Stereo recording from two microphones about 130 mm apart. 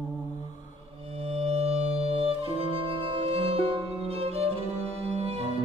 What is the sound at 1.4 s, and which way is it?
Music, 55° right (ahead or behind).